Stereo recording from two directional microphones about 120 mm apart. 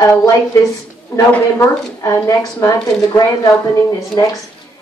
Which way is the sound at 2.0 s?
25° left (ahead or behind).